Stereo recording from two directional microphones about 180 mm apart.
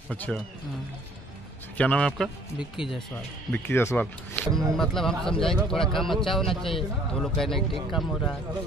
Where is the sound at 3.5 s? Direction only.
15° left (ahead or behind).